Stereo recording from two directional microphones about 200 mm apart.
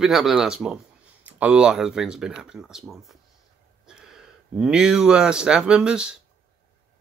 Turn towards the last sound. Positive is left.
turn(degrees=-5)  # may be behind; listen again after turning